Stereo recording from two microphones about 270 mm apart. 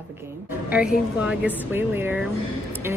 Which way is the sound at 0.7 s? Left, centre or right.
Centre.